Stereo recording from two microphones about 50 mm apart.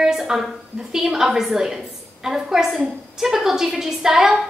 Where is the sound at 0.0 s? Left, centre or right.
Centre.